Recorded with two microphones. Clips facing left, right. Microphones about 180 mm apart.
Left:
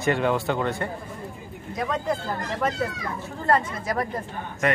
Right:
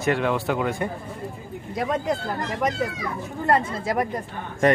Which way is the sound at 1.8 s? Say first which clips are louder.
Right 2 dB; 20° right (ahead or behind).